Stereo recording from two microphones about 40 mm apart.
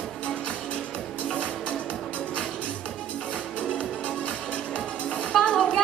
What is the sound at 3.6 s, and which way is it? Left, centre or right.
Music, left.